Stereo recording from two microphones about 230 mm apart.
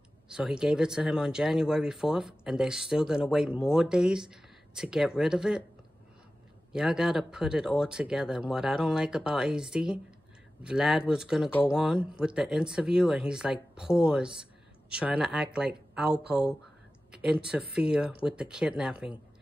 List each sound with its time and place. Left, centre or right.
0.3 s speech: centre
6.7 s speech: centre